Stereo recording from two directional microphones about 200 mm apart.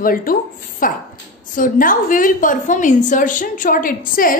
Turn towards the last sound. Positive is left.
turn(degrees=45)  # may be behind; listen again after turning